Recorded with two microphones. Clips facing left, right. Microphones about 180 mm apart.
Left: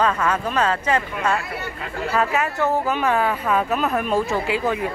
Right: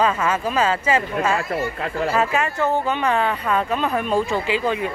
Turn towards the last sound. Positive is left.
turn(degrees=0)  # may be behind; listen again after turning